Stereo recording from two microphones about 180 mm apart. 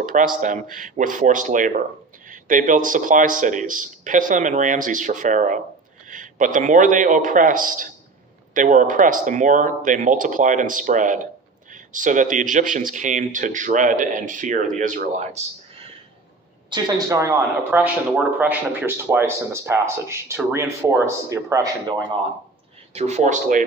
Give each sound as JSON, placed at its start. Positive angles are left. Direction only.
{"t": 0.0, "sound": "a man's voice", "side_deg": -50}
{"t": 16.7, "sound": "a man's voice", "side_deg": -20}
{"t": 22.9, "sound": "speech", "side_deg": -40}